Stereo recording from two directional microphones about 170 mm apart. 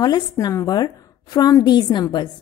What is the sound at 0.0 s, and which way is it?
A woman's voice, 25° left (ahead or behind).